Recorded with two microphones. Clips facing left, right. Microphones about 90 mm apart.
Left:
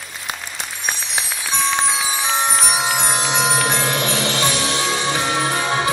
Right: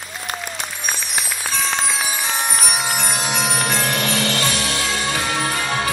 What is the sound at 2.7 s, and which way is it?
Jingle bell, 20° left (ahead or behind).